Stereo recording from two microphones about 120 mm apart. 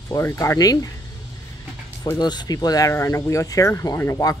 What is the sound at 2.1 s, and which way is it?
Speech, 35° left (ahead or behind).